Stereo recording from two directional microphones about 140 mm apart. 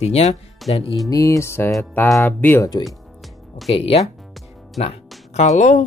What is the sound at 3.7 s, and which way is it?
Speech, 45° left (ahead or behind).